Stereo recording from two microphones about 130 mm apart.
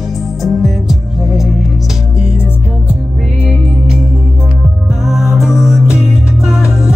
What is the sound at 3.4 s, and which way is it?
Music, 5° right (ahead or behind).